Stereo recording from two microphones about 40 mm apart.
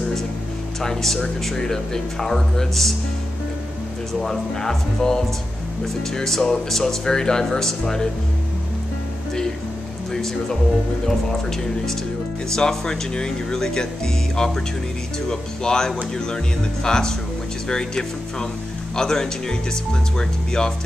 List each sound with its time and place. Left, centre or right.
0.7 s speech: centre
4.2 s speech: centre
10.1 s speech: centre
12.4 s speech: centre